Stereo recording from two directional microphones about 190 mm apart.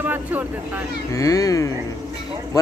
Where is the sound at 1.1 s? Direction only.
15° left (ahead or behind).